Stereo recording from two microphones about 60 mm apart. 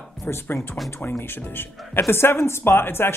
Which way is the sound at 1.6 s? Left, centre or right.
Left.